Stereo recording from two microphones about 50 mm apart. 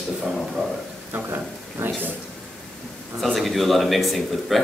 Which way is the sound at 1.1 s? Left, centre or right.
Right.